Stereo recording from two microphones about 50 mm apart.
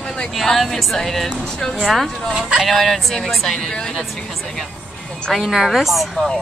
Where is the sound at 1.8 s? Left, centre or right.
Centre.